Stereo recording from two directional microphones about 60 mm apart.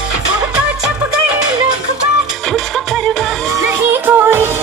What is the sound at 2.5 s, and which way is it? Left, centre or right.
Music, centre.